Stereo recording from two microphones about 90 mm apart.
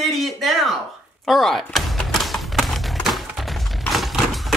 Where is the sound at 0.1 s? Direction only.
Centre (ahead or behind).